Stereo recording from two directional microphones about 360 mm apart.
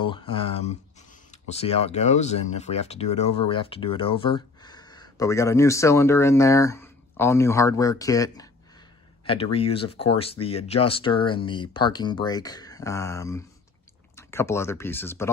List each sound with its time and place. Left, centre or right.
0.0 s speech: centre